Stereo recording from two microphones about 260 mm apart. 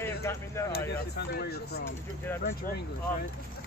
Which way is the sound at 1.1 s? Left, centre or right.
Left.